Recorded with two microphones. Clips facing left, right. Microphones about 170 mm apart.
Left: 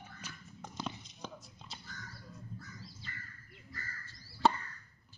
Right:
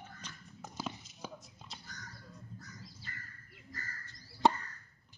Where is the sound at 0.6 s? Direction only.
5° right (ahead or behind).